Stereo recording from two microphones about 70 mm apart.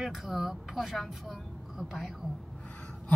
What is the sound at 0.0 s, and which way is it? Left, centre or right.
Speech, centre.